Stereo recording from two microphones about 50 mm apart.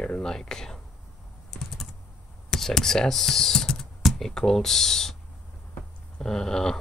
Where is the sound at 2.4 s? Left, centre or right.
Centre.